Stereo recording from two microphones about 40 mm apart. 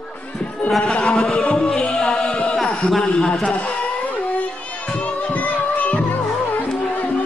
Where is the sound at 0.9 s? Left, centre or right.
Left.